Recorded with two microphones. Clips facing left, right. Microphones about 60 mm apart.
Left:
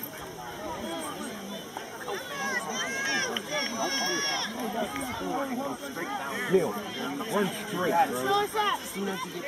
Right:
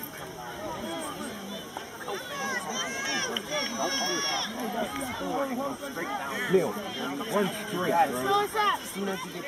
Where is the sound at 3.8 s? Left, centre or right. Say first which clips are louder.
Even; left.